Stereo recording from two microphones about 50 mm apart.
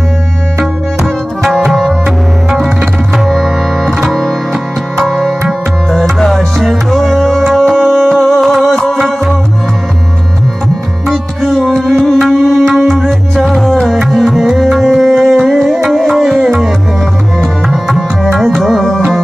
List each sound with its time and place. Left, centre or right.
1.4 s tabla: centre
2.5 s music: centre
8.1 s music: centre
8.4 s music: centre
8.6 s music: centre
8.9 s music: centre
11.1 s music: centre
12.0 s tabla: centre